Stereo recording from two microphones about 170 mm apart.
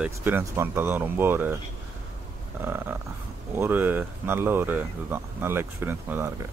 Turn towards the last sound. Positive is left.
turn(degrees=-15)  # may be behind; listen again after turning